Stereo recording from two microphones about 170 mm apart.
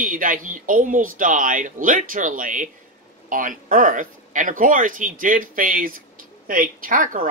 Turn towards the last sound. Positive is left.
turn(degrees=-50)  # may be behind; listen again after turning